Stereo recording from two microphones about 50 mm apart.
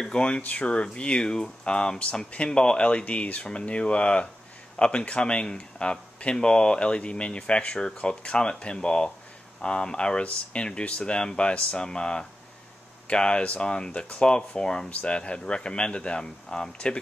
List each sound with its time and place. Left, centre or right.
0.0 s speech: centre